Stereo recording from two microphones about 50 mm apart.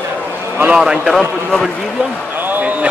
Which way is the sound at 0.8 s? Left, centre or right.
Centre.